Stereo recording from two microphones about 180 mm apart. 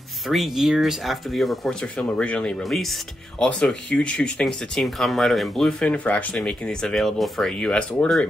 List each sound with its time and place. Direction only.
0.3 s speech: centre (ahead or behind)